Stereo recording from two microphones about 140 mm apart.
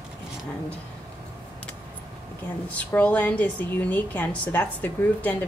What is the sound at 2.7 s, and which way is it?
Speech, 10° left (ahead or behind).